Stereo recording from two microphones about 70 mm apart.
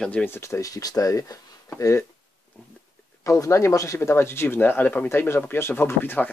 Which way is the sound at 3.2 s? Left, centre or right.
Left.